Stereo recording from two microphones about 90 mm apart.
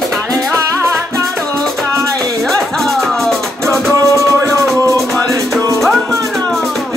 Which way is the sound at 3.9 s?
35° right (ahead or behind).